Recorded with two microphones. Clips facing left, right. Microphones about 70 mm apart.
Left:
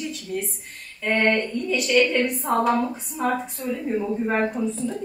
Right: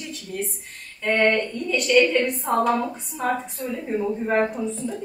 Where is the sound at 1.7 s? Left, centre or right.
Centre.